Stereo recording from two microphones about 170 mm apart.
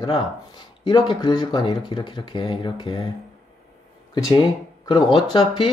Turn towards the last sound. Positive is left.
turn(degrees=30)  # may be behind; listen again after turning